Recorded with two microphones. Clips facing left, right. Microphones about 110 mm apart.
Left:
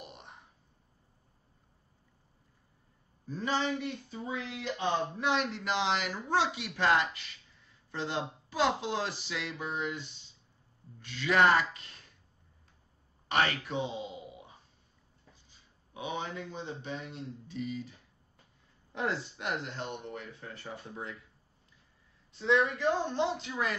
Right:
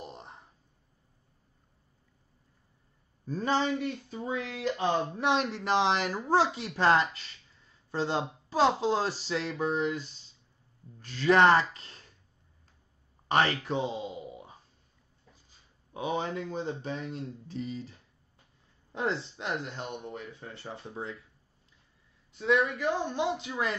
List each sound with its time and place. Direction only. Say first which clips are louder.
0.0 s a sound: right 5 dB; 35° right (ahead or behind)
3.3 s speech: right 4 dB; 40° right (ahead or behind)
13.3 s speech: right 3 dB; 35° right (ahead or behind)
15.9 s speech: right 5 dB; 40° right (ahead or behind)
18.9 s speech: right 2 dB; 25° right (ahead or behind)
22.8 s speech: even; 15° right (ahead or behind)